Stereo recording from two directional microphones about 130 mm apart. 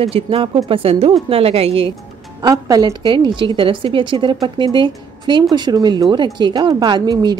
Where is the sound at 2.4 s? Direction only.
30° right (ahead or behind).